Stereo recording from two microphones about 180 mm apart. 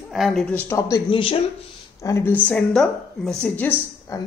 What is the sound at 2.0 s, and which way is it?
A woman's voice, 15° left (ahead or behind).